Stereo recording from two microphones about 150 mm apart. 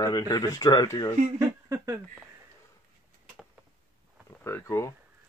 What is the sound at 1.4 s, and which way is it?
Speech, 20° right (ahead or behind).